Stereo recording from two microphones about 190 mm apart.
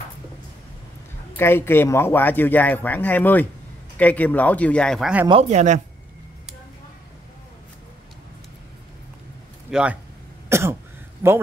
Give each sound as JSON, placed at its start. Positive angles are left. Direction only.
{"t": 1.3, "sound": "speech", "side_deg": 10}
{"t": 5.3, "sound": "speech", "side_deg": -35}
{"t": 9.7, "sound": "speech", "side_deg": -5}
{"t": 10.5, "sound": "cough", "side_deg": -15}
{"t": 11.2, "sound": "a man's voice", "side_deg": -10}